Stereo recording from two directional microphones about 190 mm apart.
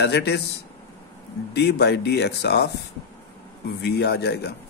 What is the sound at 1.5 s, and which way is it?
A man's voice, 60° left (ahead or behind).